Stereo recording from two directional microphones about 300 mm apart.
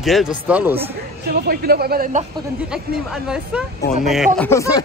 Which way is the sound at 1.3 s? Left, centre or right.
Right.